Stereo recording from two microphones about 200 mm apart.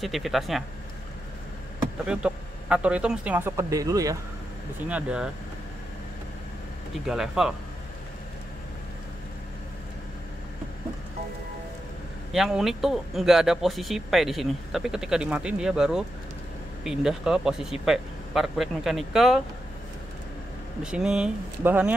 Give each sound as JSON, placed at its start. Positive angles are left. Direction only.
{"t": 0.0, "sound": "speech", "side_deg": 0}
{"t": 2.0, "sound": "a man's voice", "side_deg": -5}
{"t": 4.8, "sound": "speech", "side_deg": -5}
{"t": 7.1, "sound": "speech", "side_deg": 0}
{"t": 12.3, "sound": "speech", "side_deg": 0}
{"t": 20.8, "sound": "speech", "side_deg": -5}